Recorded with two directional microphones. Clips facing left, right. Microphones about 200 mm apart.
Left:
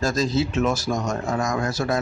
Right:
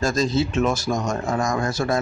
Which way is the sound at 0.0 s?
5° left (ahead or behind).